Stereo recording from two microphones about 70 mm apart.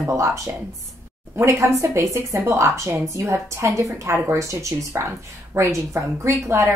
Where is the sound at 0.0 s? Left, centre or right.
Right.